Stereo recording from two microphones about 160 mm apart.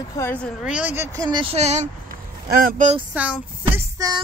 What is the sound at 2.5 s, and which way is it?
Speech, 65° right (ahead or behind).